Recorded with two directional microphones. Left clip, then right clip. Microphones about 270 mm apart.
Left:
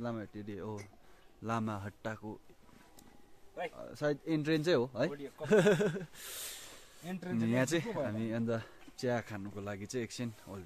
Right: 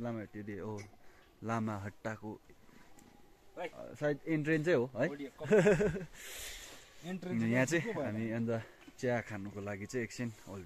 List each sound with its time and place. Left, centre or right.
0.0 s a man's voice: centre
3.7 s speech: centre
5.1 s speech: left
5.5 s speech: centre